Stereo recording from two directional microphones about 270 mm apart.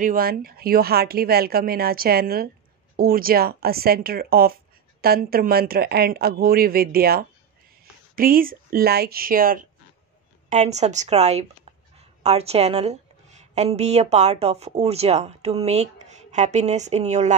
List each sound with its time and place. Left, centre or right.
0.0 s speech: right